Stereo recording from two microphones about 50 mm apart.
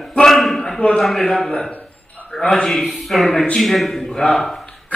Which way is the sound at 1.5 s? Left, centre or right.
Left.